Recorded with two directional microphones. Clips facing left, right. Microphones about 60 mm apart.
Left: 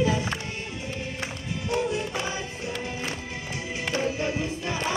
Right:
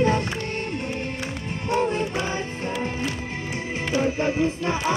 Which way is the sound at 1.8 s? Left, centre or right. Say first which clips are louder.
Right 4 dB; right.